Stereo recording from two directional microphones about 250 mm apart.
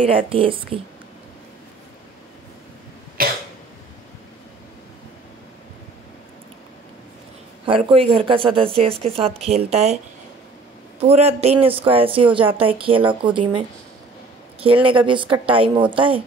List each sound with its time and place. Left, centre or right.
0.3 s speech: right
3.2 s cough: right
7.6 s speech: right
11.0 s speech: right